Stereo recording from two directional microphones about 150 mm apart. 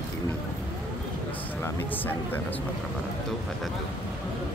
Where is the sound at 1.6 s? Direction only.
15° left (ahead or behind).